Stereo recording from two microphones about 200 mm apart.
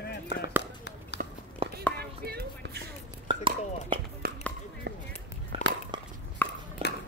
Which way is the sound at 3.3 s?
25° right (ahead or behind).